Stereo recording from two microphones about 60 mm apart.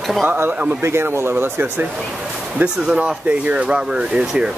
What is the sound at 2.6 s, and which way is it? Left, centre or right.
Speech, centre.